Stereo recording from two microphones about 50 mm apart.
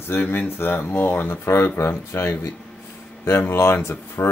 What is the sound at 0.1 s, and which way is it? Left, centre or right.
Speech, left.